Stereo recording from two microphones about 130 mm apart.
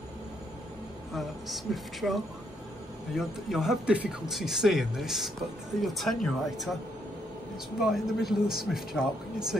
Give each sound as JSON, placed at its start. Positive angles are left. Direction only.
{"t": 1.1, "sound": "speech", "side_deg": 0}
{"t": 7.8, "sound": "speech", "side_deg": 0}